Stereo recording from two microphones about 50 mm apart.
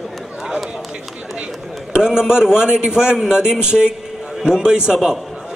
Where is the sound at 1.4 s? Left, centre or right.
Centre.